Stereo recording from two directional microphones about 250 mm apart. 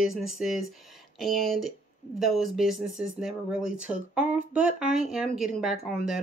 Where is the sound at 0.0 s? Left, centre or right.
Centre.